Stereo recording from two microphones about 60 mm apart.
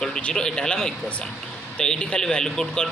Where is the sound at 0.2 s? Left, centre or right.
Centre.